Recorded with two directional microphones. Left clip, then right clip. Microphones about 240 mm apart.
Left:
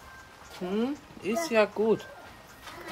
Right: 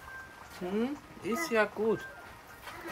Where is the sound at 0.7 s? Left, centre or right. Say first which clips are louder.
Left 3 dB; left.